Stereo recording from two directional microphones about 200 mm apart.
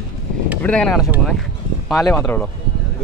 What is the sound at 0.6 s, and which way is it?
A man's voice, 5° left (ahead or behind).